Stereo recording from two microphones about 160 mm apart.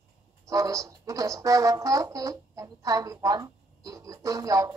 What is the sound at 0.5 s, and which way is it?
Speech, 20° right (ahead or behind).